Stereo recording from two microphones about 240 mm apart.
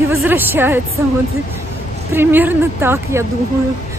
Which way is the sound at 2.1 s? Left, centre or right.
Centre.